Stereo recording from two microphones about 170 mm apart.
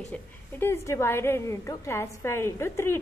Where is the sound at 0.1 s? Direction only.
15° left (ahead or behind).